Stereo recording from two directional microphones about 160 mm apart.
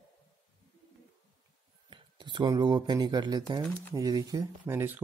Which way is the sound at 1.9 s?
30° right (ahead or behind).